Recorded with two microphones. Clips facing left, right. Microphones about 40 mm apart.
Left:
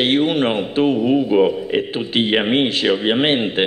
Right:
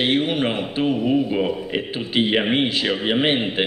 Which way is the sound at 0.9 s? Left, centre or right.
Centre.